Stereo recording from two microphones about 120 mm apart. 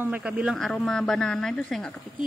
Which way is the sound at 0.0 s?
10° right (ahead or behind).